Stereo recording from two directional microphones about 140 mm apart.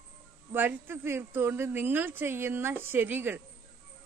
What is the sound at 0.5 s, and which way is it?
A woman's voice, 15° right (ahead or behind).